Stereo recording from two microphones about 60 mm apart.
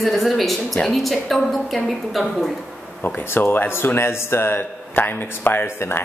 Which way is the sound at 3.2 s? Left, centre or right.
Left.